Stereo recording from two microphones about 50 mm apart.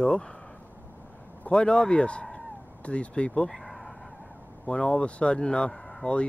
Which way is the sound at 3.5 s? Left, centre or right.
Centre.